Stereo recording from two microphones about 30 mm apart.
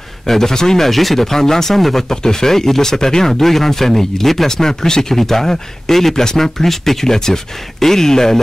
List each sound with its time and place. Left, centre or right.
0.3 s speech: centre
0.8 s speech: centre
2.0 s speech: centre
4.5 s speech: centre